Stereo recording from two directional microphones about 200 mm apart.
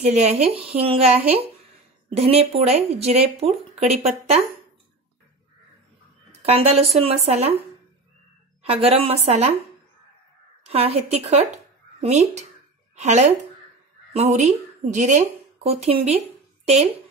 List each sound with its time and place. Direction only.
0.0 s speech: 35° right (ahead or behind)
6.4 s speech: 30° right (ahead or behind)
8.6 s speech: 30° right (ahead or behind)
10.6 s a woman's voice: 30° right (ahead or behind)